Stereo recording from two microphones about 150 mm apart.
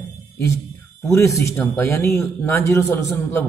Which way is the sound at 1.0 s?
20° left (ahead or behind).